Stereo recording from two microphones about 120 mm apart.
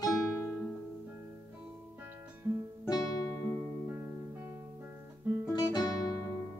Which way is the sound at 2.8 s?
30° left (ahead or behind).